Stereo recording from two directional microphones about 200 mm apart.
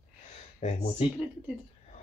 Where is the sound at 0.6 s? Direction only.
35° left (ahead or behind).